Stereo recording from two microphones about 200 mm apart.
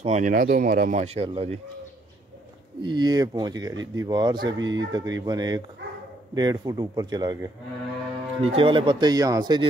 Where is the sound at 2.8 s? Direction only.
20° right (ahead or behind).